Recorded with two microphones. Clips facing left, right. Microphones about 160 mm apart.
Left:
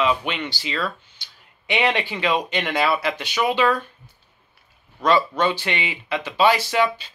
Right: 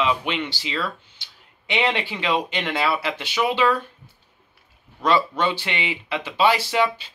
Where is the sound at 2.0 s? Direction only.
25° right (ahead or behind).